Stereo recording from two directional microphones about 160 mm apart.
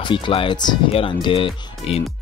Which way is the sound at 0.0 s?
30° left (ahead or behind).